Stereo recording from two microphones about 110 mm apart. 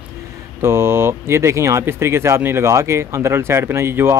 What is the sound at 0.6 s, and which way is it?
Speech, 25° right (ahead or behind).